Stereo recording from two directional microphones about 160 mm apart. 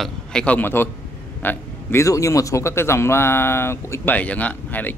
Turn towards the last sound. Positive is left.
turn(degrees=10)  # may be behind; listen again after turning